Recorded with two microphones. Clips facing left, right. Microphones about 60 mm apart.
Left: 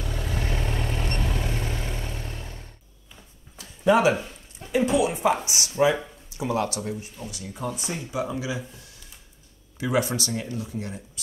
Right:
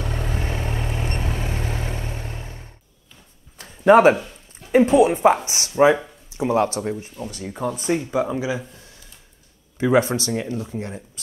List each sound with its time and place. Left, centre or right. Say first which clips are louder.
0.0 s vehicle: right 4 dB; right
0.4 s vehicle: right 2 dB; right
1.3 s vehicle: right 2 dB; right
3.5 s a sound: right 7 dB; right
4.6 s a sound: right 8 dB; left
4.9 s speech: right 7 dB; right